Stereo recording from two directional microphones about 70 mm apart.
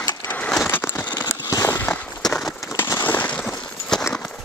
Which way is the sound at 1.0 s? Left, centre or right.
Left.